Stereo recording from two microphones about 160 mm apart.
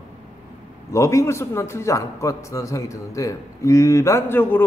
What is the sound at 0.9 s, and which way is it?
A man's voice, 20° left (ahead or behind).